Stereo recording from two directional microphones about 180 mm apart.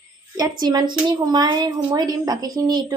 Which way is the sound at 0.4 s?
20° right (ahead or behind).